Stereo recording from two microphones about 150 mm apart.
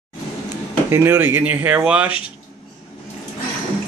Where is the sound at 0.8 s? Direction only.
15° right (ahead or behind).